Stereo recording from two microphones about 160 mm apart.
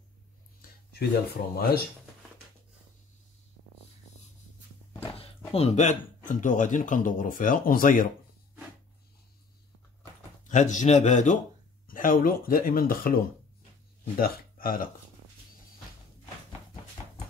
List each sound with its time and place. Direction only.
0.9 s speech: 80° left
5.5 s speech: 40° left (ahead or behind); by 8.1 s 60° left (ahead or behind)
10.5 s a man's voice: 50° left (ahead or behind)
11.9 s speech: 60° left (ahead or behind)